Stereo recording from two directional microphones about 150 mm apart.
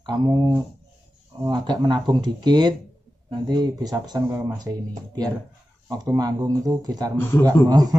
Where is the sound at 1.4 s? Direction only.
25° right (ahead or behind).